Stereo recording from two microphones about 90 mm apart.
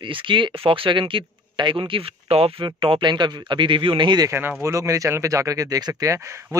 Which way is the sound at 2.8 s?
70° right (ahead or behind).